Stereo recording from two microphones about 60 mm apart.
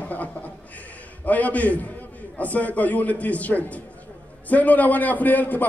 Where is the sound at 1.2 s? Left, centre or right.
Left.